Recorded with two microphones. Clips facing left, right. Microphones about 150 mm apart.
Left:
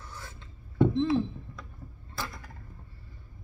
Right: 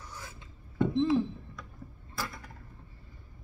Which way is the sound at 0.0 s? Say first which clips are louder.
Even; 15° right (ahead or behind).